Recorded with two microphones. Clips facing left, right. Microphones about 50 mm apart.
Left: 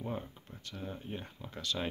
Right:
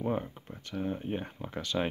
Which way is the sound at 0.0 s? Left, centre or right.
Right.